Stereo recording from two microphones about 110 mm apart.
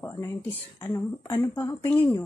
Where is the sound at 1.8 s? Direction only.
15° left (ahead or behind).